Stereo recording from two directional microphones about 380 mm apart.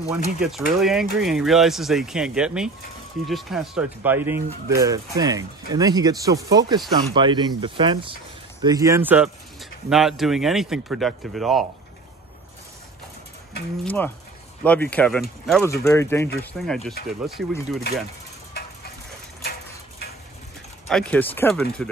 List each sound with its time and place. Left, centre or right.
0.0 s speech: centre
0.4 s speech: centre
13.8 s speech: centre
20.9 s speech: centre